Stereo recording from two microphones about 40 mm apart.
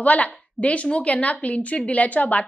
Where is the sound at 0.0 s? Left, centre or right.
Left.